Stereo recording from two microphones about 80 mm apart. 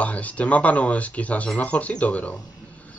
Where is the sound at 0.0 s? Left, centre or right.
Centre.